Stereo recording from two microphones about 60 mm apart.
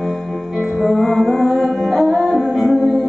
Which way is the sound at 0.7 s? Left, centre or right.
Centre.